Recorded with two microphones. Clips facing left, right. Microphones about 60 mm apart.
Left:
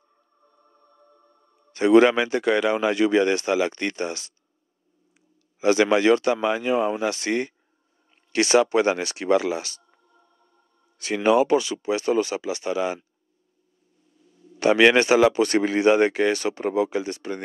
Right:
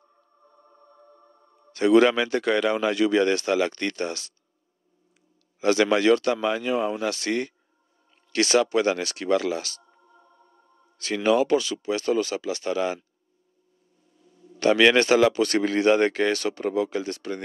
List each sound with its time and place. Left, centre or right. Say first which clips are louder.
0.5 s music: right 4 dB; right
1.7 s speech: left 2 dB; left
5.6 s speech: left 2 dB; centre
10.0 s music: right 5 dB; right
11.0 s speech: left 2 dB; centre
14.6 s speech: left 1 dB; centre